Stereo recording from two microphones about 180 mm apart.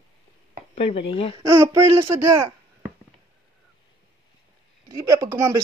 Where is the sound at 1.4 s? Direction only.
15° right (ahead or behind).